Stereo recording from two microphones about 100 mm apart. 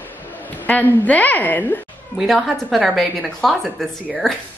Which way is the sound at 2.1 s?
Centre (ahead or behind).